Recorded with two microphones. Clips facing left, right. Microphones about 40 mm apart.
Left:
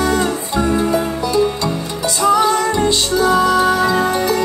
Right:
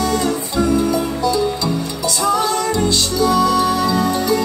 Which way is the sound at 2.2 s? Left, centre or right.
Left.